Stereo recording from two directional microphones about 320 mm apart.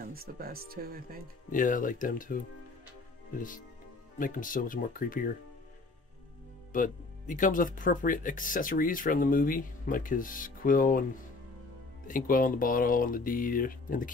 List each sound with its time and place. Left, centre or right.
0.1 s speech: right
1.5 s speech: left
6.7 s speech: left
12.1 s speech: left